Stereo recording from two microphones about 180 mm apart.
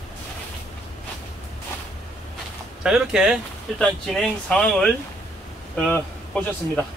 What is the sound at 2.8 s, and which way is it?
A man's voice, 5° right (ahead or behind).